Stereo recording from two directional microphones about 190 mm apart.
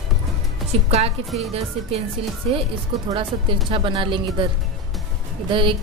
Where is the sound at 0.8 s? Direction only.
30° right (ahead or behind).